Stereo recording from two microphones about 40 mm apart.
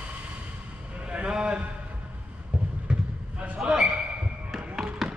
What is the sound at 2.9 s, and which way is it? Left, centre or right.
Basketball bounce, right.